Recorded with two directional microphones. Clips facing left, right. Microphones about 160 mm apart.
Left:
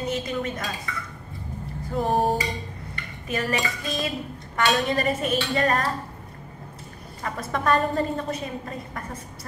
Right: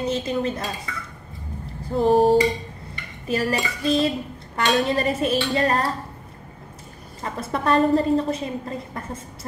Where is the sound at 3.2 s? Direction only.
35° right (ahead or behind).